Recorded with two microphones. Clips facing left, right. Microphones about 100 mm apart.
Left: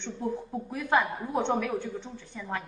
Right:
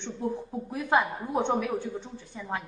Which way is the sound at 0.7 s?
15° right (ahead or behind).